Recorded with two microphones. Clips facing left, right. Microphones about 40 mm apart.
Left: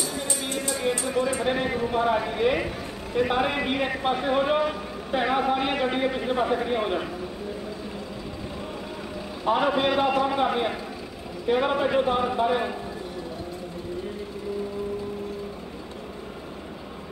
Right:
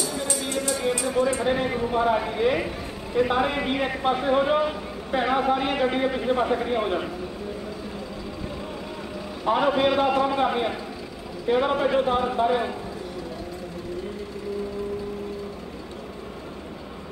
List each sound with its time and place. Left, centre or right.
0.0 s music: left
1.4 s a man's voice: centre
9.4 s a man's voice: centre